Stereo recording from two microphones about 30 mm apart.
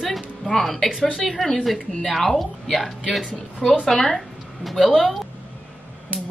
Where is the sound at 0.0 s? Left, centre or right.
Centre.